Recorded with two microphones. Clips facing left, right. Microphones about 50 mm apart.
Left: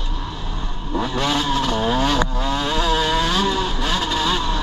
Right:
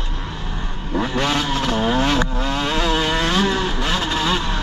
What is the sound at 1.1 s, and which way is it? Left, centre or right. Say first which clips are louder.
Vehicle: right 1 dB; right.